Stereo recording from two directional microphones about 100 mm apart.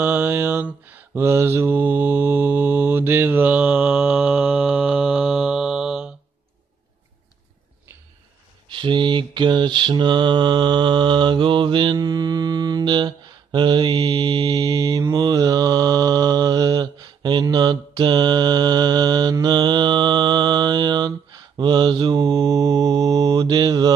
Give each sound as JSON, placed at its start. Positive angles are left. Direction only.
{"t": 0.0, "sound": "mantra", "side_deg": -20}
{"t": 8.6, "sound": "mantra", "side_deg": -55}